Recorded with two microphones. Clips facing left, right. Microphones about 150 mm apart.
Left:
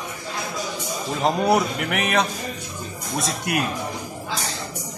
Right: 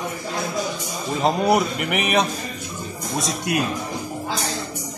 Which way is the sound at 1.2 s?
5° right (ahead or behind).